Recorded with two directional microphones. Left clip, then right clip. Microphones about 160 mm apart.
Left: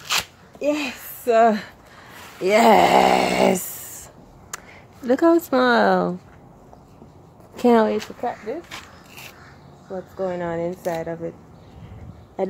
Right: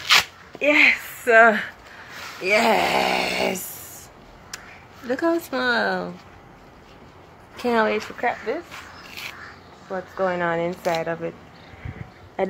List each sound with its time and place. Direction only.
0.2 s sneeze: 5° left (ahead or behind)
1.2 s speech: 50° left (ahead or behind)
2.4 s speech: 75° left (ahead or behind)
5.0 s speech: 70° left (ahead or behind)
7.5 s speech: 75° left (ahead or behind)
8.2 s speech: 5° left (ahead or behind)
10.1 s speech: 20° left (ahead or behind)